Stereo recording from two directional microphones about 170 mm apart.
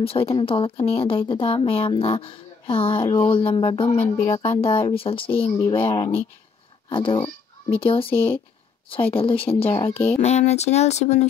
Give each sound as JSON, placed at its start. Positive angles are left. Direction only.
{"t": 0.0, "sound": "speech", "side_deg": 35}
{"t": 4.0, "sound": "speech", "side_deg": 15}
{"t": 4.6, "sound": "speech", "side_deg": 35}
{"t": 8.1, "sound": "speech", "side_deg": 10}
{"t": 9.4, "sound": "speech", "side_deg": 35}
{"t": 9.7, "sound": "speech", "side_deg": 15}
{"t": 10.1, "sound": "speech", "side_deg": 40}